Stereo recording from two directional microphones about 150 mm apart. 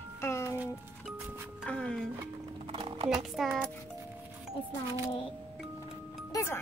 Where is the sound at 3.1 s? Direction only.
Centre (ahead or behind).